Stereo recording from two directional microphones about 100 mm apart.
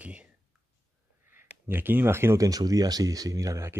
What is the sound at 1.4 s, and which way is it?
Speech, 20° right (ahead or behind).